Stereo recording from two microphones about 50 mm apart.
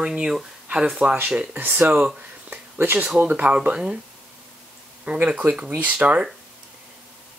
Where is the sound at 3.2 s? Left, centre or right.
Right.